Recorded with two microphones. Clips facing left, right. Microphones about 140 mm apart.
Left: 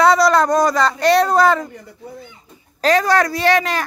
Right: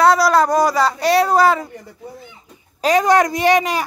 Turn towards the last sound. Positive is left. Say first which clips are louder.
# right 1 dB
turn(degrees=-15)  # may be behind; listen again after turning